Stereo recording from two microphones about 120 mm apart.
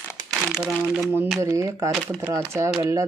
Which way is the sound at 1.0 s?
20° right (ahead or behind).